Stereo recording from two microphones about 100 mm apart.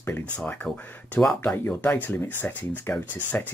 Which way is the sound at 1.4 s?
15° left (ahead or behind).